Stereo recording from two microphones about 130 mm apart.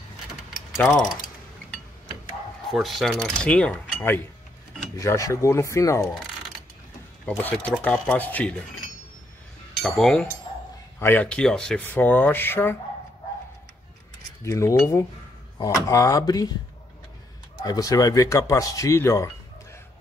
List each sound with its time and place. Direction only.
0.5 s a sound: centre (ahead or behind)
2.7 s speech: centre (ahead or behind)
4.9 s cutlery: 25° left (ahead or behind)
7.6 s speech: 10° left (ahead or behind)
9.8 s speech: centre (ahead or behind)
11.0 s speech: 15° left (ahead or behind)
14.4 s cutlery: 25° left (ahead or behind)
17.6 s speech: 30° left (ahead or behind)